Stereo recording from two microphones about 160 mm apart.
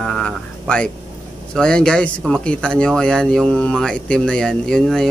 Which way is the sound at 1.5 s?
5° left (ahead or behind).